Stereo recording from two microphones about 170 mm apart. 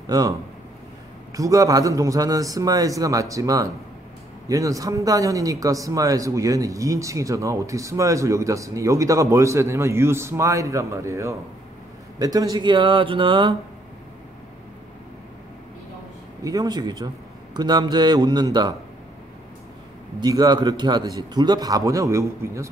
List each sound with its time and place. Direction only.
0.0 s speech: 20° right (ahead or behind)
16.4 s speech: 25° right (ahead or behind)
20.2 s speech: 25° right (ahead or behind)